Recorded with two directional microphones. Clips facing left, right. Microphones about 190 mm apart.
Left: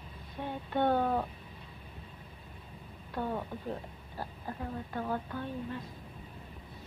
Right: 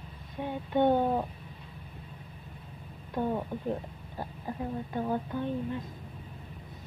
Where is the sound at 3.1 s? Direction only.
20° right (ahead or behind).